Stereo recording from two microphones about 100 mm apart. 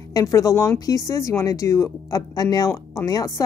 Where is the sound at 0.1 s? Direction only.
35° left (ahead or behind).